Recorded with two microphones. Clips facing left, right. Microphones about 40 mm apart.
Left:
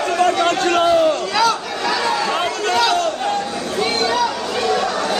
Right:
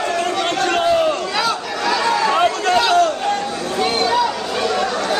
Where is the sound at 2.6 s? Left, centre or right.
Right.